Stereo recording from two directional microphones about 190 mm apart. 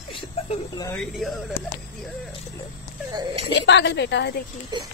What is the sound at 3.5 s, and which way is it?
Speech, 65° left (ahead or behind).